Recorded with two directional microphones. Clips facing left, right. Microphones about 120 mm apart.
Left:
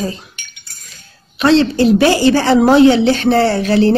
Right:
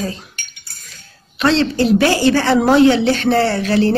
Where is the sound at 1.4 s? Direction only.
15° left (ahead or behind).